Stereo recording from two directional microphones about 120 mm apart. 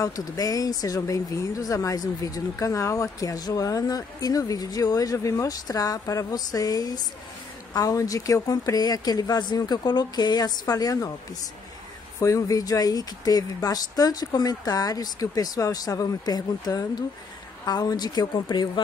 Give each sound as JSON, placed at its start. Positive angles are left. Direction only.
{"t": 0.0, "sound": "speech", "side_deg": 30}
{"t": 12.2, "sound": "speech", "side_deg": 25}